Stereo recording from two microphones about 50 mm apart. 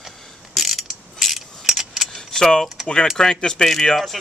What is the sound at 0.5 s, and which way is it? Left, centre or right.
Mechanisms, centre.